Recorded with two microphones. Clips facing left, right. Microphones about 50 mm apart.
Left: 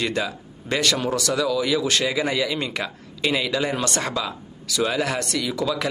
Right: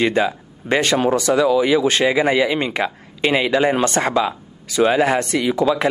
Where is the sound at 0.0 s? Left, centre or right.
Right.